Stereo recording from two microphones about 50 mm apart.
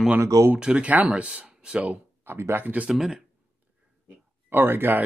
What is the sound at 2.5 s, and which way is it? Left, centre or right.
Speech, right.